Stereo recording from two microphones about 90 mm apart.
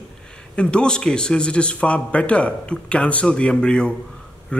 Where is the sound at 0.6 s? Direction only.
10° left (ahead or behind).